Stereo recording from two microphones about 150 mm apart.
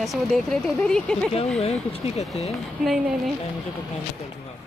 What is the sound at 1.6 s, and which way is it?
Speech, 40° left (ahead or behind).